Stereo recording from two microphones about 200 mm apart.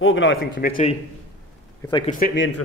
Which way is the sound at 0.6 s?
45° left (ahead or behind).